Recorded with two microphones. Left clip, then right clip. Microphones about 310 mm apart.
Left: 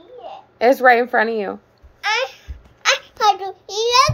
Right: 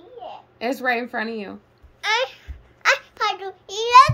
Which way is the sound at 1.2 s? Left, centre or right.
Left.